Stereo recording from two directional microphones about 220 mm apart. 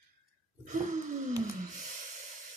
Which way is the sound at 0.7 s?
35° right (ahead or behind).